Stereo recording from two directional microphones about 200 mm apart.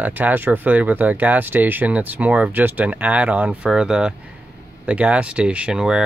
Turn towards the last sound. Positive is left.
turn(degrees=-5)  # may be behind; listen again after turning